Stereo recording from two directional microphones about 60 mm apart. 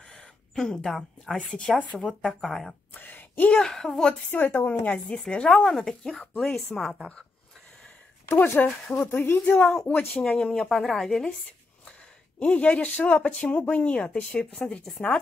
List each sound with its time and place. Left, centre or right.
0.0 s a sound: centre
1.5 s a woman's voice: centre
2.9 s a sound: left
3.5 s a woman's voice: centre
4.3 s speech: left
4.9 s a woman's voice: centre
8.3 s speech: left
9.6 s a woman's voice: centre
9.8 s speech: left
10.2 s a woman's voice: centre
12.4 s a woman's voice: left